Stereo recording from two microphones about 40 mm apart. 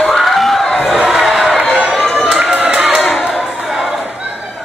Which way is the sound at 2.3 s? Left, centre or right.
Centre.